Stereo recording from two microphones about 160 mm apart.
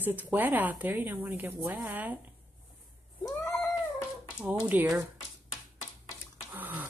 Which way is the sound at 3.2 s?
20° left (ahead or behind).